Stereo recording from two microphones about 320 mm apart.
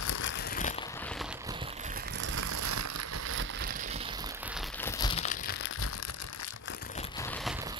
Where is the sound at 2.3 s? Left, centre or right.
Right.